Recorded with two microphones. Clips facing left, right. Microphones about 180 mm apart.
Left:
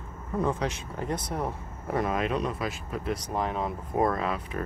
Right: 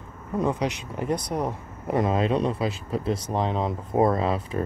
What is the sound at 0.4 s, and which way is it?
Speech, 15° right (ahead or behind).